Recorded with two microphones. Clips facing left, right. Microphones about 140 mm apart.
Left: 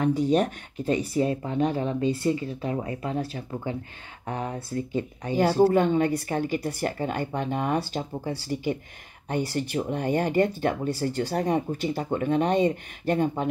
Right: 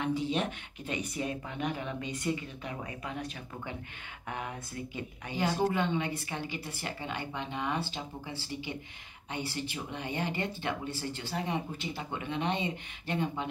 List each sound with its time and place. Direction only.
0.0 s speech: 45° left (ahead or behind)